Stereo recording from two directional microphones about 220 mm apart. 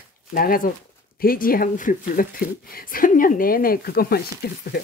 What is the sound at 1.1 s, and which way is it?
Speech, 40° left (ahead or behind).